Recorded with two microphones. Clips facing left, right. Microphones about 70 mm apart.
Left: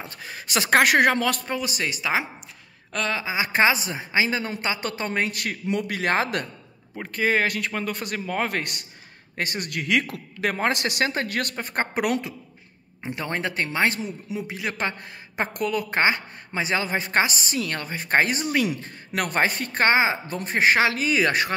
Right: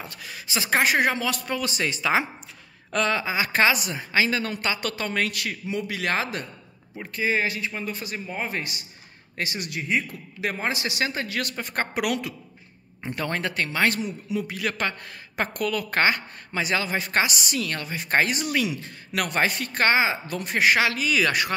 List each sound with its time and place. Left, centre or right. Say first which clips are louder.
0.5 s a man's voice: left 4 dB; left
1.6 s speech: right 1 dB; centre
3.3 s a woman's voice: left 3 dB; left
5.4 s a man's voice: left 3 dB; left
5.9 s speech: left 3 dB; left
7.0 s a man's voice: left 2 dB; left
9.4 s a man's voice: left 2 dB; left
9.8 s a man's voice: left 3 dB; left
10.4 s speech: left 4 dB; left
13.0 s speech: even; centre